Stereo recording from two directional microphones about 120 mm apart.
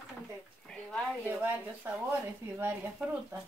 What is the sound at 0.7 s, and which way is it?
Speech, 5° left (ahead or behind).